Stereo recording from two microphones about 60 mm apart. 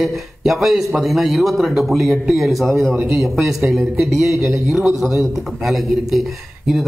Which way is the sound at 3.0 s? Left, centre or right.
Right.